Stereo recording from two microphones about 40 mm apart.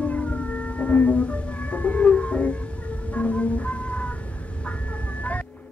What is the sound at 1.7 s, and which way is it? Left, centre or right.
Music, left.